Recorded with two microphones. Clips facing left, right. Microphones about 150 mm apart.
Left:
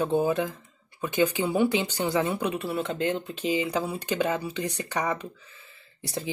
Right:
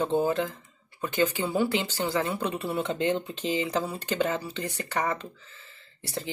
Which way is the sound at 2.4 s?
Centre (ahead or behind).